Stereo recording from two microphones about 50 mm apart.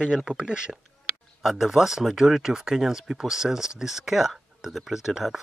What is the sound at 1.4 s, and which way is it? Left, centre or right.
Speech, centre.